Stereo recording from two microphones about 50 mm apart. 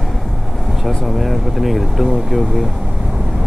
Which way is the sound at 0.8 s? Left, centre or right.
Centre.